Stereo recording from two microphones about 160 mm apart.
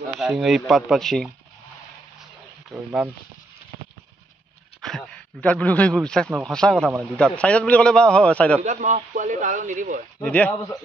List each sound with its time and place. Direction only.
0.2 s speech: centre (ahead or behind)
2.7 s speech: 5° right (ahead or behind)
4.8 s a man's voice: 5° left (ahead or behind)
8.6 s speech: 50° right (ahead or behind)
10.2 s a man's voice: 10° left (ahead or behind)